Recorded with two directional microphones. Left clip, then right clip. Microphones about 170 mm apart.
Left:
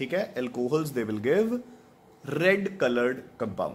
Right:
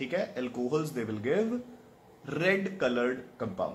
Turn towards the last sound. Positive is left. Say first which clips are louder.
# left 3 dB
turn(degrees=65)  # may be behind; listen again after turning